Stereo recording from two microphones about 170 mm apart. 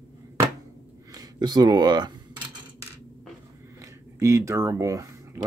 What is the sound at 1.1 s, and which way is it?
Speech, 25° right (ahead or behind).